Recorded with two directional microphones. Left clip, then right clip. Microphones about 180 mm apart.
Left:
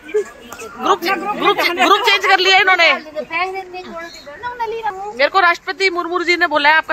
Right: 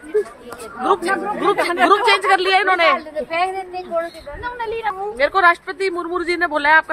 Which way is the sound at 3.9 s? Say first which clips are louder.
Right 7 dB; 60° right (ahead or behind).